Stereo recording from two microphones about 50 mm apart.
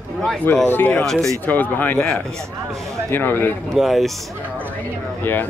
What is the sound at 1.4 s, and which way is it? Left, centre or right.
Speech, left.